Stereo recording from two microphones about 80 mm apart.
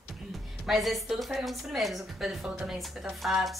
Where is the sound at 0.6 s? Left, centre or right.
Centre.